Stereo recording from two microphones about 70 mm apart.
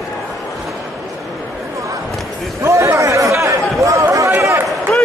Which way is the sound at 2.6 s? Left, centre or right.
Right.